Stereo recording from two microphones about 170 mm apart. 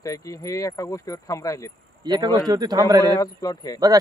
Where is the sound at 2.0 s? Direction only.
25° right (ahead or behind).